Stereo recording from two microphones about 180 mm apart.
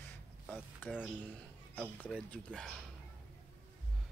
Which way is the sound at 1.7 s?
Centre (ahead or behind).